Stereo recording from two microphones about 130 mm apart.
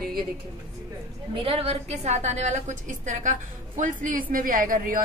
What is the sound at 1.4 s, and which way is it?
A woman's voice, 50° right (ahead or behind).